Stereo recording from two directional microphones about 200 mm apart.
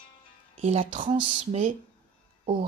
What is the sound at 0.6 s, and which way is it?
A woman's voice, 30° right (ahead or behind).